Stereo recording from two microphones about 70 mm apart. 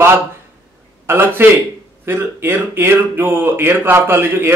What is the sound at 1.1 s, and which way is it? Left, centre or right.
A man's voice, right.